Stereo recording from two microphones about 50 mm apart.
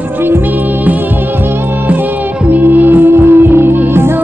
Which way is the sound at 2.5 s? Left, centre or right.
Right.